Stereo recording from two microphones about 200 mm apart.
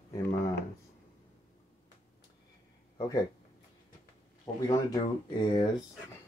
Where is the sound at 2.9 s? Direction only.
20° left (ahead or behind).